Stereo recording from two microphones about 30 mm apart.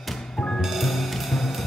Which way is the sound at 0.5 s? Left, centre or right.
Centre.